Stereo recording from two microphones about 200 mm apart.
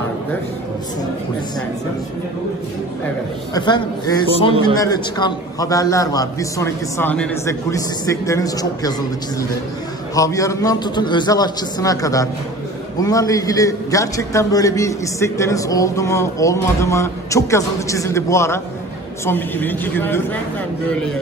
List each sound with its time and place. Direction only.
3.5 s a man's voice: 20° left (ahead or behind)
10.1 s a man's voice: 15° left (ahead or behind)